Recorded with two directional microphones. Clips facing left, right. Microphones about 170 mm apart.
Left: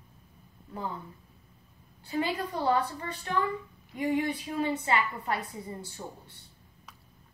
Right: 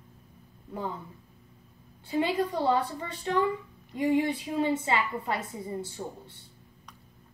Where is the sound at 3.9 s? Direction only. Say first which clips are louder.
Right 3 dB; 25° right (ahead or behind).